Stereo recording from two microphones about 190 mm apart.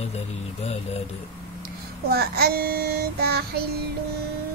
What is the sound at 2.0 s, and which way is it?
Child singing, 55° right (ahead or behind).